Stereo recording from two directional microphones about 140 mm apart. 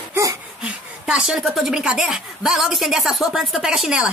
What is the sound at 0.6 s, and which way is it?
A woman's voice, 5° right (ahead or behind).